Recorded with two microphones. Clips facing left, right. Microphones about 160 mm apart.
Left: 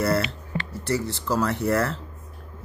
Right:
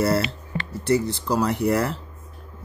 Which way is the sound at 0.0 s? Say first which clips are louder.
Right 2 dB; 25° right (ahead or behind).